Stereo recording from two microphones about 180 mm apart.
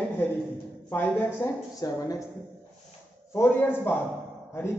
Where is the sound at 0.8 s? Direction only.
10° left (ahead or behind).